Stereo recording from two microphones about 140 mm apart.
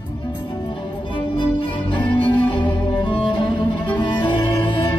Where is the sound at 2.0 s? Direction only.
35° left (ahead or behind).